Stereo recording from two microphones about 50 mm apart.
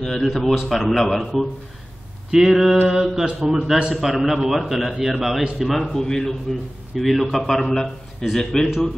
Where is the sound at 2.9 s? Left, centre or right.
Centre.